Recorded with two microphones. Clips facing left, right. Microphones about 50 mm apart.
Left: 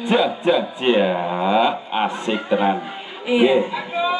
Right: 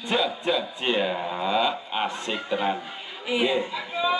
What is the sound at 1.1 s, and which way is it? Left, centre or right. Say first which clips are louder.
Speech: left 7 dB; left.